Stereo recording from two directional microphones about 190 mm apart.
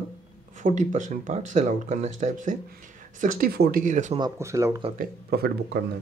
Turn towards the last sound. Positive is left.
turn(degrees=-55)  # may be behind; listen again after turning